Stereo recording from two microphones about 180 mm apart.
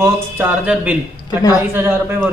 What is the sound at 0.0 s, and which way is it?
Speech, 10° right (ahead or behind).